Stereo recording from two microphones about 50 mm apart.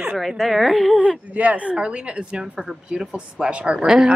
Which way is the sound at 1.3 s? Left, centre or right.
Right.